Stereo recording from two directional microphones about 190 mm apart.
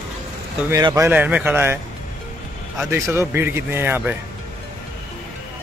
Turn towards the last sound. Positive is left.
turn(degrees=-10)  # may be behind; listen again after turning